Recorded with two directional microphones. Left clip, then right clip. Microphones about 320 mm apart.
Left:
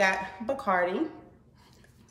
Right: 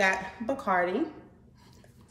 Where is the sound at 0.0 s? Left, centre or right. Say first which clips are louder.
Left 1 dB; centre.